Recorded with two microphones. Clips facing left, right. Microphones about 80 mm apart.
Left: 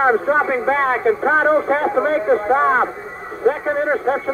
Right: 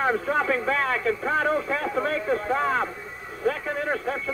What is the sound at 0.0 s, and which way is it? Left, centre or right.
A man's voice, left.